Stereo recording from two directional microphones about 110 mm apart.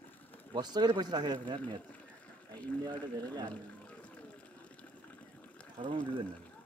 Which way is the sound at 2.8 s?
35° right (ahead or behind).